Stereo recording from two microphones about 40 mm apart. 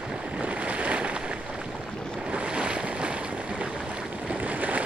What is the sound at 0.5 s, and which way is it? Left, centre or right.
Boat, right.